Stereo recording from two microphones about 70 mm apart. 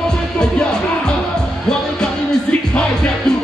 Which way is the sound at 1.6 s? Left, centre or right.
Centre.